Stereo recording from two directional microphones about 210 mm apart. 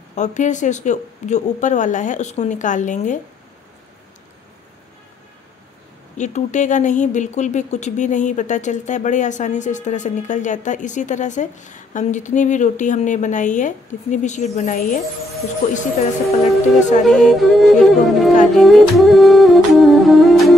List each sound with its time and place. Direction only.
0.1 s speech: 35° left (ahead or behind)
6.1 s speech: 35° left (ahead or behind)
17.0 s music: centre (ahead or behind)